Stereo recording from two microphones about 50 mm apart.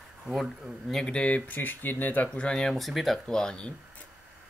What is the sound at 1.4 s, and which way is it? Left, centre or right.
Speech, left.